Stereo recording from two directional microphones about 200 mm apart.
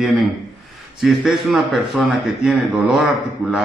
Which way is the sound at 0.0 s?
Centre (ahead or behind).